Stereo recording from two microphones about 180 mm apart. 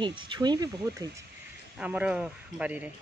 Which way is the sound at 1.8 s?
5° right (ahead or behind).